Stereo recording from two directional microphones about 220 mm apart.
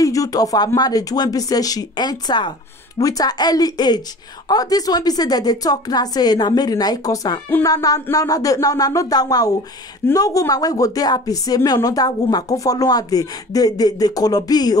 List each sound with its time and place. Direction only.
0.0 s a woman's voice: 15° left (ahead or behind)